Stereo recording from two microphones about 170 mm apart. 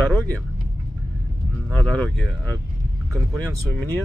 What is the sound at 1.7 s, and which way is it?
Speech, 5° left (ahead or behind).